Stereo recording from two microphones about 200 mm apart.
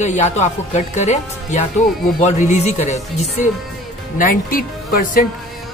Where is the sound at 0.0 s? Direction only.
35° left (ahead or behind).